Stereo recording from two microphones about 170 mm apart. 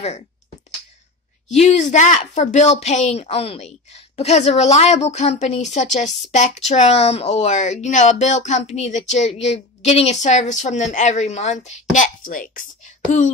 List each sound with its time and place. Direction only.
1.5 s a woman's voice: 40° left (ahead or behind)